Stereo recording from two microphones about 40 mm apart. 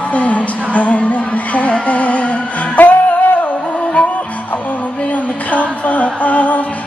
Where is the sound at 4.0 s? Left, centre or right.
Left.